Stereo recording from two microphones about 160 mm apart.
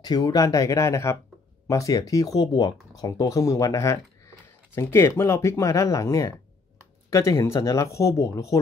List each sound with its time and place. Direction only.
0.0 s speech: 25° left (ahead or behind)